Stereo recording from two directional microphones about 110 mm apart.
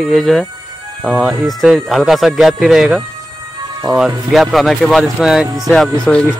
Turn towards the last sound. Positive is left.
turn(degrees=10)  # may be behind; listen again after turning